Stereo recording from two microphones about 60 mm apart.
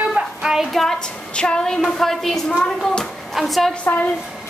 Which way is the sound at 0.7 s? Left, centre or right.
Centre.